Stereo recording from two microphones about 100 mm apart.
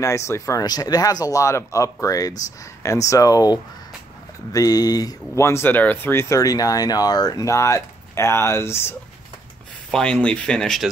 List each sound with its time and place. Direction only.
0.0 s speech: 30° left (ahead or behind)
9.8 s speech: 5° left (ahead or behind)